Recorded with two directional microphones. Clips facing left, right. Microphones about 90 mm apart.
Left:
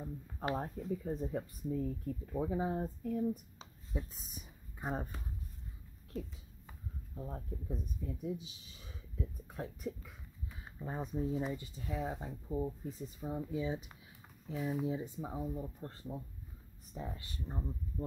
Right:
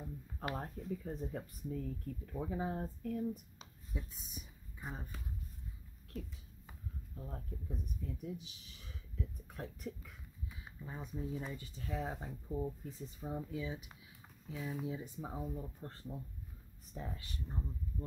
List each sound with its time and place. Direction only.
0.0 s speech: 20° left (ahead or behind); by 5.2 s 40° left (ahead or behind)
7.2 s speech: 20° left (ahead or behind)
10.8 s speech: 40° left (ahead or behind)
11.1 s speech: 25° left (ahead or behind)
13.5 s speech: 30° left (ahead or behind)
14.5 s speech: 15° left (ahead or behind)
15.1 s speech: centre (ahead or behind)
15.4 s speech: 15° left (ahead or behind)
17.5 s speech: 25° left (ahead or behind)